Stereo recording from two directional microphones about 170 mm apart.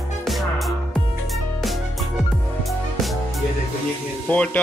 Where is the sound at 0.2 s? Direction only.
Centre (ahead or behind).